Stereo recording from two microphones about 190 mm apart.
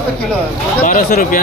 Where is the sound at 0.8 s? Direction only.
45° left (ahead or behind).